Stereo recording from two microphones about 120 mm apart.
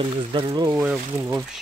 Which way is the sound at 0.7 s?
10° right (ahead or behind).